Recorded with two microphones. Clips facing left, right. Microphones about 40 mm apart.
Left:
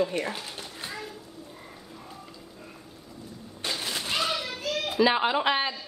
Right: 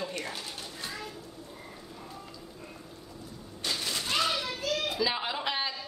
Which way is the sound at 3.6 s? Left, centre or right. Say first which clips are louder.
Left 1 dB; centre.